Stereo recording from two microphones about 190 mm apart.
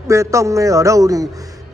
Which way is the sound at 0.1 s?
15° right (ahead or behind).